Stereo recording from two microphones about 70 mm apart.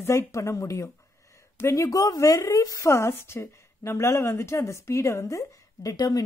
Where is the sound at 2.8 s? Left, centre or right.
Left.